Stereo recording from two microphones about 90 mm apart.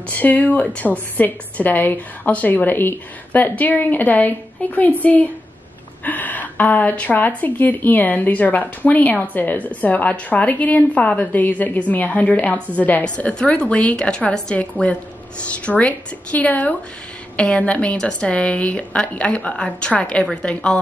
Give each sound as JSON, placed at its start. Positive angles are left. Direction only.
{"t": 0.1, "sound": "a woman's voice", "side_deg": 20}